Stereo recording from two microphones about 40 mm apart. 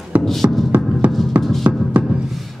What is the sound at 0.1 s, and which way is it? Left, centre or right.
Music, right.